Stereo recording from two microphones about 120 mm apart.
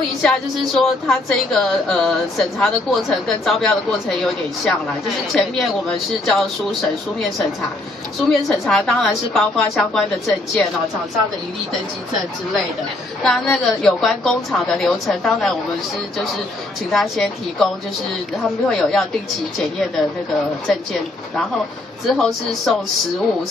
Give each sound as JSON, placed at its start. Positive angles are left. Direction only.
{"t": 0.2, "sound": "speech", "side_deg": 5}
{"t": 13.2, "sound": "speech", "side_deg": 5}
{"t": 16.9, "sound": "speech", "side_deg": 0}
{"t": 18.7, "sound": "speech", "side_deg": 5}